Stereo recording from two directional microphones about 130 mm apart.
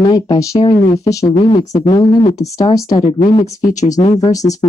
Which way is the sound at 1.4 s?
45° left (ahead or behind).